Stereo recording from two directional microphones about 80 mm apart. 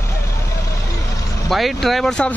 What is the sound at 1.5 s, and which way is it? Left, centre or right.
Speech, centre.